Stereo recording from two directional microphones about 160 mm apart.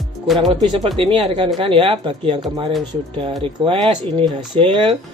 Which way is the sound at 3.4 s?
35° right (ahead or behind).